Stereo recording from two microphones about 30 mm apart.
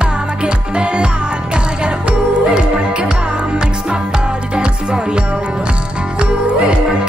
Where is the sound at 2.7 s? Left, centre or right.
Right.